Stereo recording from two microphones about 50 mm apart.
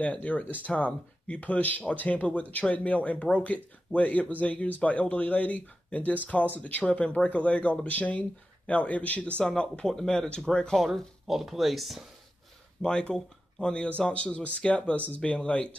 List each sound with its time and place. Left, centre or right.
0.0 s speech: left
9.4 s speech: centre
10.8 s speech: centre
12.8 s speech: centre